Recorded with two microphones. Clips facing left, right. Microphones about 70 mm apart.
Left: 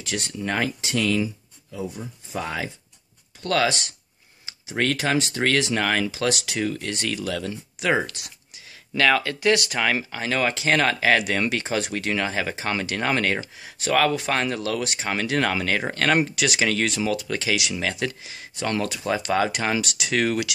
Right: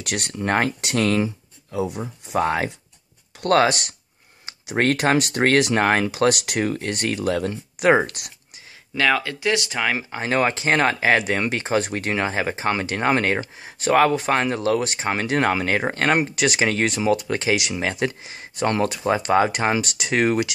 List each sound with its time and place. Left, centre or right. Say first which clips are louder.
0.0 s speech: right 3 dB; right
1.7 s speech: right 6 dB; right
2.3 s speech: right 8 dB; right
5.4 s speech: right 6 dB; right
6.1 s speech: right 5 dB; right
6.6 s speech: right 3 dB; right
8.9 s speech: even; centre
10.1 s speech: right 3 dB; right
16.3 s speech: right 3 dB; right
17.0 s speech: right 4 dB; right
19.8 s speech: right 3 dB; right